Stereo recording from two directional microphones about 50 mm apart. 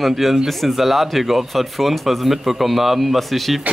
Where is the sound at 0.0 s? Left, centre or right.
Centre.